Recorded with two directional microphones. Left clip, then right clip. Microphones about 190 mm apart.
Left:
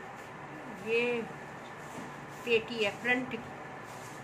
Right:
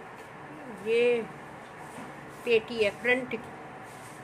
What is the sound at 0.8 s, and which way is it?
Speech, 20° right (ahead or behind).